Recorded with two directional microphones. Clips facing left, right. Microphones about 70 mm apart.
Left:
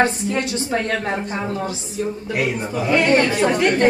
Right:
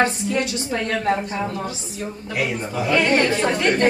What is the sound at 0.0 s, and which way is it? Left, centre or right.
Speech, left.